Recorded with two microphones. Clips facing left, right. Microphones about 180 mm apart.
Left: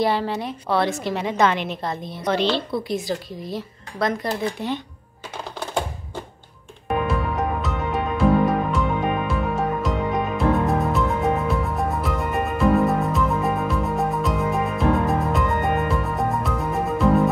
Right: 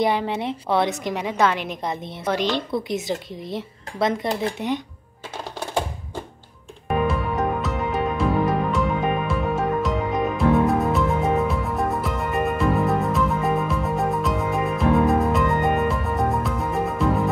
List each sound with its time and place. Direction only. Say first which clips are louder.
0.0 s speech: even; 15° right (ahead or behind)
2.2 s speech: left 2 dB; 10° right (ahead or behind)
7.1 s music: right 1 dB; centre (ahead or behind)